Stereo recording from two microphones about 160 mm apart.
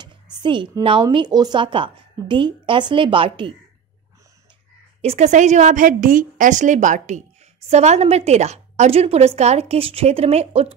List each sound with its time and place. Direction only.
0.0 s a woman's voice: 30° right (ahead or behind)
5.0 s a woman's voice: 40° right (ahead or behind)